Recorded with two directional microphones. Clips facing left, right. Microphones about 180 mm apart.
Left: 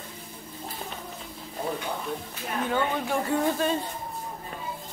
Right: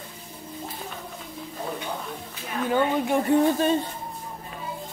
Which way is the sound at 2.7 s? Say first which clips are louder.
Right 6 dB; 20° right (ahead or behind).